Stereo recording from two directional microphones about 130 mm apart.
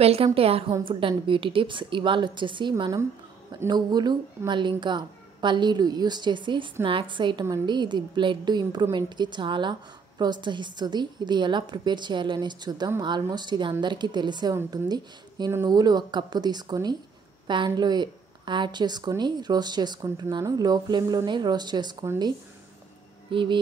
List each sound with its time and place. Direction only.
0.0 s a woman's voice: 50° right (ahead or behind)
2.8 s a woman's voice: 25° right (ahead or behind)
23.3 s speech: 40° right (ahead or behind)